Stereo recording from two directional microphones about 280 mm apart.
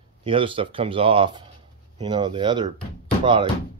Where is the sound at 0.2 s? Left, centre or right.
Centre.